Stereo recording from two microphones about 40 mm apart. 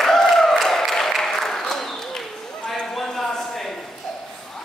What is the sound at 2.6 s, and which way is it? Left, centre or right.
Livestock, centre.